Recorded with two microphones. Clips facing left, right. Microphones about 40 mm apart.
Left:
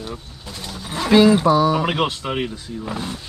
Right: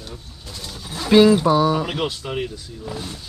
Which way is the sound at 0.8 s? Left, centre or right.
Left.